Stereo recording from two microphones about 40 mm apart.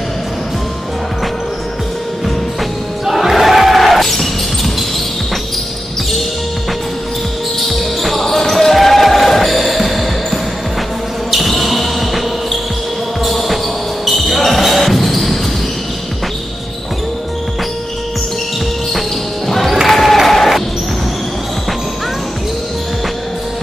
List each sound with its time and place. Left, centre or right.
3.1 s basketball bounce: centre
7.6 s basketball bounce: centre
13.2 s basketball bounce: centre
18.9 s music: centre
19.9 s applause: centre
20.2 s basketball bounce: centre